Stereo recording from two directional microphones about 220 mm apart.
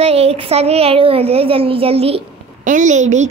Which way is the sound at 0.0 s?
25° right (ahead or behind).